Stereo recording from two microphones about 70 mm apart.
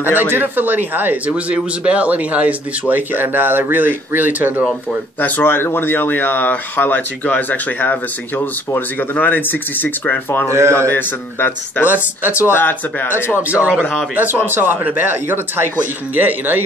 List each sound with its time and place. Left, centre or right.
0.0 s speech: right
5.2 s speech: left
10.5 s a man's voice: right
10.9 s speech: left
11.8 s speech: right
12.4 s speech: left
13.4 s speech: right